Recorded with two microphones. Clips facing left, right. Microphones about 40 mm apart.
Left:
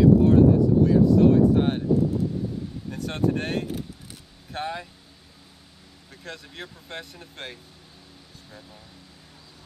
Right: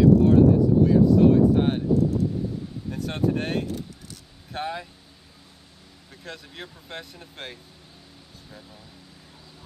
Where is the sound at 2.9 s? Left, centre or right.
Centre.